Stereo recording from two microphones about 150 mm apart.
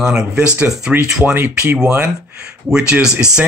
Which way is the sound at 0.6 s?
20° right (ahead or behind).